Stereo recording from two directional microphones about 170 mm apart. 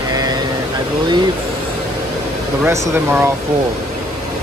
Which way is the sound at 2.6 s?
15° right (ahead or behind).